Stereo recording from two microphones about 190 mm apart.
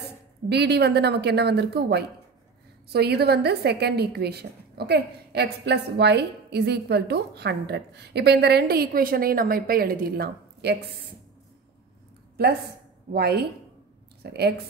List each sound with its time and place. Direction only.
0.5 s a woman's voice: 60° right (ahead or behind)
13.1 s a woman's voice: 60° right (ahead or behind)